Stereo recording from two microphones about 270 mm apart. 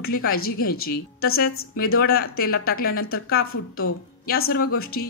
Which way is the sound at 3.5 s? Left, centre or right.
Left.